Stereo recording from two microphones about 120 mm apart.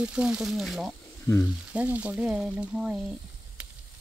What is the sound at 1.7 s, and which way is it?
Speech, 10° right (ahead or behind).